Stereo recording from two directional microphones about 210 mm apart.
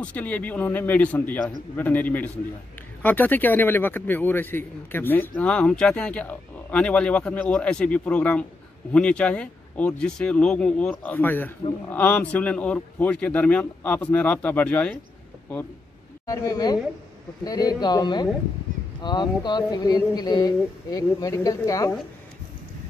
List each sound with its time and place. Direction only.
0.0 s a man's voice: 5° left (ahead or behind)
16.3 s a man's voice: 20° left (ahead or behind)